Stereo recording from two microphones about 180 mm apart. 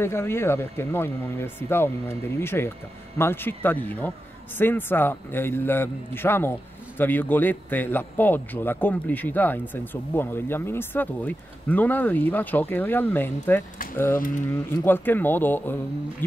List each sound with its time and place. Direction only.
0.0 s speech: 15° left (ahead or behind)